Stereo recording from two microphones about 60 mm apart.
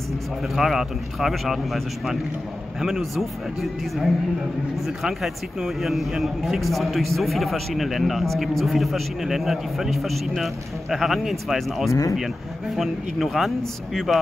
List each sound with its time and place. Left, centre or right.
0.6 s speech: centre
4.8 s speech: centre
11.9 s speech: left
12.7 s speech: centre